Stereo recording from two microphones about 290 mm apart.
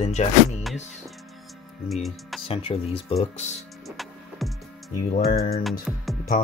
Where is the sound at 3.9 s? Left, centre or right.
Centre.